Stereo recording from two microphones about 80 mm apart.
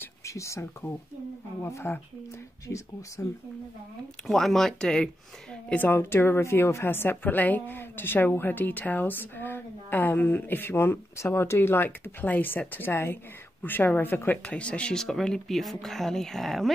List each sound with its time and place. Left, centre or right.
0.2 s speech: left
3.2 s speech: left
4.3 s speech: centre
5.9 s a woman's voice: left
14.4 s speech: centre